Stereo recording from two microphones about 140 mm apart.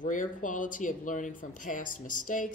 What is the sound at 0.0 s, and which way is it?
A woman's voice, 70° left (ahead or behind).